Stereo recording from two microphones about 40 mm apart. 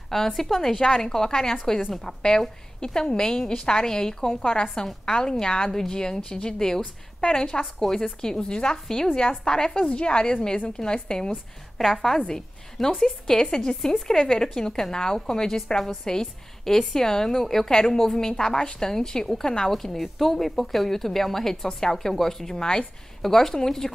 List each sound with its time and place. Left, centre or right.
0.1 s a woman's voice: centre
9.2 s a woman's voice: left
11.8 s a woman's voice: centre
19.7 s a woman's voice: centre